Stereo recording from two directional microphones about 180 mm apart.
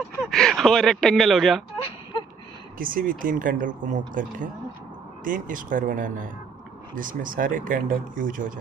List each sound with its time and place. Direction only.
0.2 s speech: centre (ahead or behind)
2.8 s speech: 50° right (ahead or behind)